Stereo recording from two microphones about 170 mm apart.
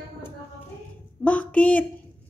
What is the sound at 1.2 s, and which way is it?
Speech, 10° left (ahead or behind).